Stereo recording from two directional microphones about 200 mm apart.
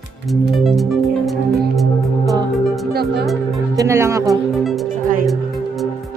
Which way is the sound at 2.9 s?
55° right (ahead or behind).